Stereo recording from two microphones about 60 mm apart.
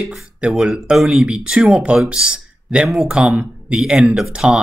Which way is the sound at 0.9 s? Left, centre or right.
Centre.